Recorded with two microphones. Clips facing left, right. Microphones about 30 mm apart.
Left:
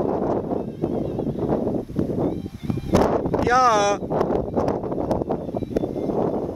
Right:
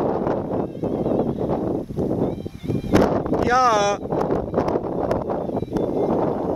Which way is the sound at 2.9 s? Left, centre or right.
Centre.